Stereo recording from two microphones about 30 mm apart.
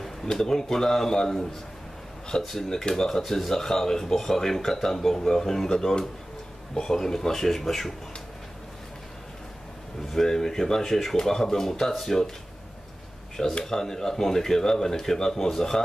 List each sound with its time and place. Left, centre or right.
0.3 s speech: centre
10.1 s speech: centre
13.7 s speech: centre